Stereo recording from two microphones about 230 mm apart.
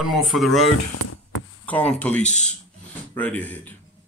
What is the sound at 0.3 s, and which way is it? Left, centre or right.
Speech, centre.